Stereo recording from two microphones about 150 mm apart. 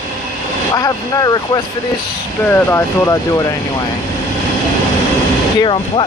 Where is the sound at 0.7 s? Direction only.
25° left (ahead or behind).